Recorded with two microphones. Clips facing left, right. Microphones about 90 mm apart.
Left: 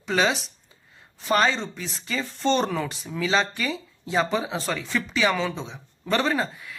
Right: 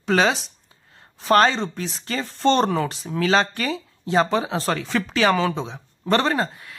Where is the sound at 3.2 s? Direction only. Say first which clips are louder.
Right 4 dB; 60° right (ahead or behind); by 4.7 s 40° right (ahead or behind).